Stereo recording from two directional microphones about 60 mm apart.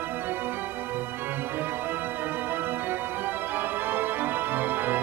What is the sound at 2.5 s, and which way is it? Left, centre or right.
Music, right.